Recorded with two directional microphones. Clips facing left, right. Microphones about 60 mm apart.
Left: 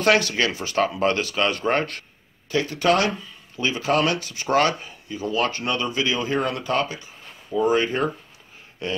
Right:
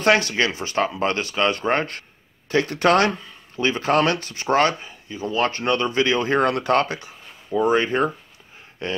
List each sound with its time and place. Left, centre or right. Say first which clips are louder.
0.0 s speech: right 1 dB; right
1.3 s speech: right 1 dB; centre
2.5 s speech: right 2 dB; right
4.6 s speech: even; right
7.5 s speech: right 1 dB; right